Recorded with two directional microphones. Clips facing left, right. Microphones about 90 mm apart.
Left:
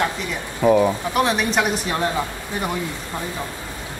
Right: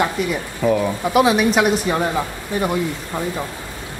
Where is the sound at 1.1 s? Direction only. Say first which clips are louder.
Right 6 dB; 5° right (ahead or behind).